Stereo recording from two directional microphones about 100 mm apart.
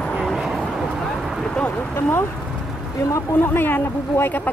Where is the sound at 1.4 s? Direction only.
10° left (ahead or behind).